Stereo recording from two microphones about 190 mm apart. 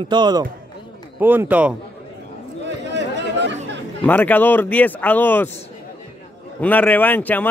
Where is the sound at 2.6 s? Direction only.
65° right (ahead or behind).